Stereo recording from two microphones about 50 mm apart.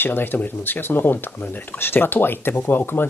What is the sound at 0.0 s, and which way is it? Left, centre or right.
Speech, left.